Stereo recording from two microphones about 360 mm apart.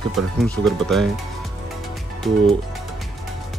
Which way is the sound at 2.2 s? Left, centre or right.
Centre.